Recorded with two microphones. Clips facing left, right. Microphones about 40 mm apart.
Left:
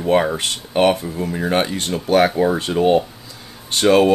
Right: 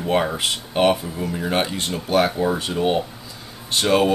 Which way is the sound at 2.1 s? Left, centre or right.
Left.